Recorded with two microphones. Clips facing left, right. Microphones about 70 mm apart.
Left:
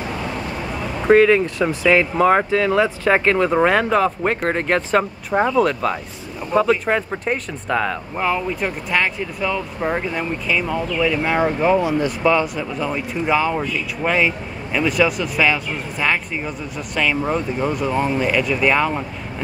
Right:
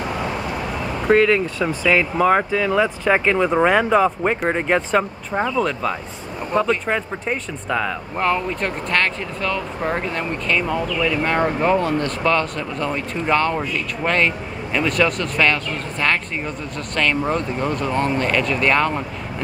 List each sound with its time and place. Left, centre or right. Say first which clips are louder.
1.0 s speech: left 3 dB; centre
5.3 s speech: left 4 dB; centre
5.6 s speech: left 3 dB; centre